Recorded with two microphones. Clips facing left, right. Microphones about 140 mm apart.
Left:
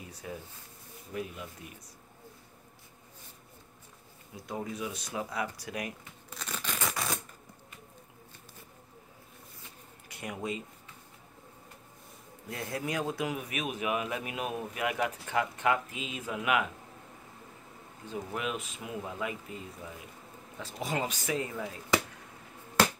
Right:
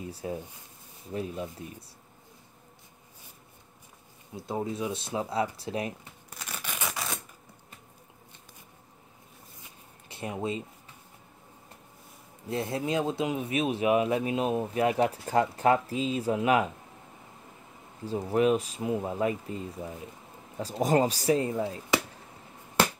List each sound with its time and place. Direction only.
0.0 s speech: 30° right (ahead or behind)
4.4 s speech: 25° right (ahead or behind)
6.3 s scissors: 10° right (ahead or behind)
10.0 s speech: 25° right (ahead or behind)
12.4 s speech: 25° right (ahead or behind)
18.0 s speech: 35° right (ahead or behind)